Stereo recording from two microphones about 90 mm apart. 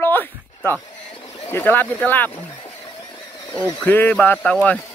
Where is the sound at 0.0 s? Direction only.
20° left (ahead or behind).